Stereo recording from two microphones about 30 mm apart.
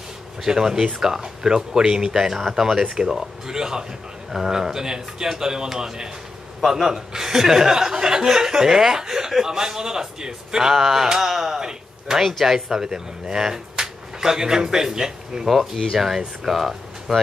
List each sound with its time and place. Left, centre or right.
0.5 s speech: centre
6.6 s speech: centre
10.7 s a sound: centre
11.1 s speech: centre
12.2 s a sound: centre
12.5 s speech: centre